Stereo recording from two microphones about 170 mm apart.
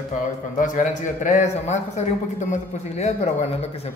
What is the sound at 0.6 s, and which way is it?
A man's voice, 50° left (ahead or behind).